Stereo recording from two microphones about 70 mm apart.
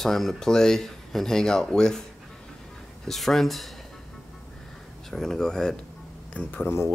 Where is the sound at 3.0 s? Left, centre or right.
Centre.